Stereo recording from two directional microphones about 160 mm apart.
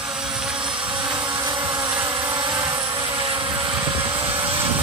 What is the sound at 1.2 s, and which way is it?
Vehicle, 30° right (ahead or behind).